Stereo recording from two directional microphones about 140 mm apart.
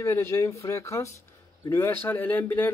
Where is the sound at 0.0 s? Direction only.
20° left (ahead or behind).